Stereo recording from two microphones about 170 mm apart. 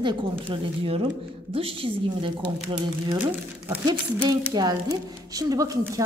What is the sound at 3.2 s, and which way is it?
Speech, 10° right (ahead or behind).